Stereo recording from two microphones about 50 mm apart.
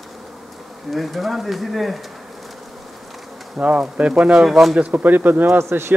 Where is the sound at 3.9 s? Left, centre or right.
Right.